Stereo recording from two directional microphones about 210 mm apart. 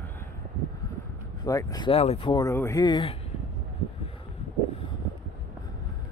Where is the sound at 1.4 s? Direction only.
15° left (ahead or behind).